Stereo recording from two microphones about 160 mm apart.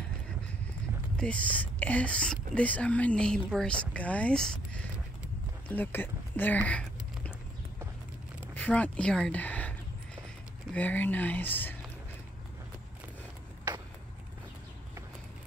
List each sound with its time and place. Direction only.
1.1 s speech: 5° left (ahead or behind)
8.5 s speech: 10° left (ahead or behind)